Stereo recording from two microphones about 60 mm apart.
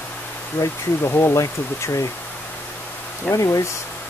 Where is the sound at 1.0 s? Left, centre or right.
Left.